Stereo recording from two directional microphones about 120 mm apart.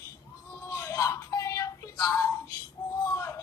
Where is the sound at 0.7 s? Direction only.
30° left (ahead or behind).